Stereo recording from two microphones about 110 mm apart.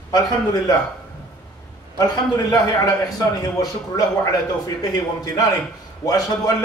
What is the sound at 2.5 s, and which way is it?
A man's voice, 35° left (ahead or behind).